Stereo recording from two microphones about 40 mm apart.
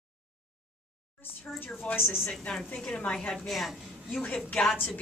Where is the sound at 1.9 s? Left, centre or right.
Left.